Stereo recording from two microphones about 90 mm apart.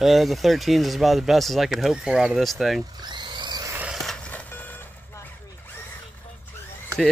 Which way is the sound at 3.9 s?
Centre (ahead or behind).